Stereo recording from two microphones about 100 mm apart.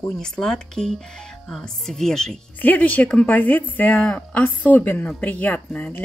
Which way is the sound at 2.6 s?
15° left (ahead or behind).